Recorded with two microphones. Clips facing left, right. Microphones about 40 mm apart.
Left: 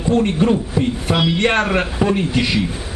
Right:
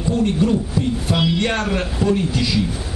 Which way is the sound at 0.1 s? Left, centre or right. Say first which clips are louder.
Left 3 dB; left.